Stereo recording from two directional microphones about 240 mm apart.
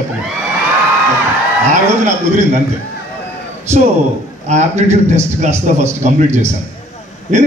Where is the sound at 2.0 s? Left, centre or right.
Right.